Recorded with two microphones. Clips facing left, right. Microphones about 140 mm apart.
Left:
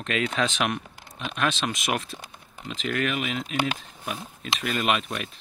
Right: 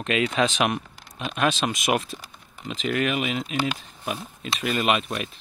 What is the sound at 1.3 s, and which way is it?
Speech, 15° right (ahead or behind).